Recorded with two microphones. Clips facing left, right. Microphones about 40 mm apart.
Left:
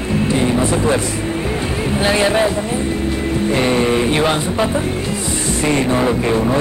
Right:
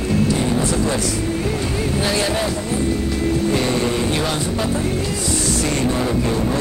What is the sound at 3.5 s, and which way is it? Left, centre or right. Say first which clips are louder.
Speech: left 4 dB; left.